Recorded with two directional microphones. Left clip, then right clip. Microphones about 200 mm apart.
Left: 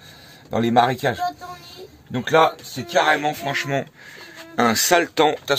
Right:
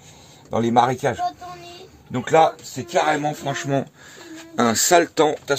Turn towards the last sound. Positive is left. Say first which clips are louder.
# left 1 dB
turn(degrees=-20)  # may be behind; listen again after turning